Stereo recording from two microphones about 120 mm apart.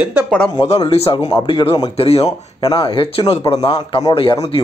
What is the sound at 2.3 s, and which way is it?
Speech, 35° left (ahead or behind).